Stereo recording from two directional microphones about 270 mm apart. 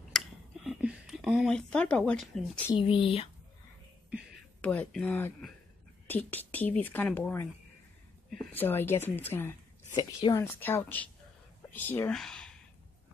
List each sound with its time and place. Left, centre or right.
0.1 s a sound: centre
0.7 s speech: centre
2.7 s speech: centre
4.1 s speech: centre